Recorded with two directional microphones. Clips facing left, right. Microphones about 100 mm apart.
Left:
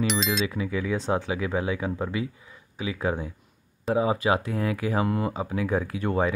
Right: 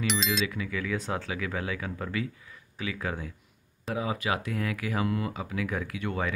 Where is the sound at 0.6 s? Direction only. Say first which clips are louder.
Left 4 dB; 25° left (ahead or behind).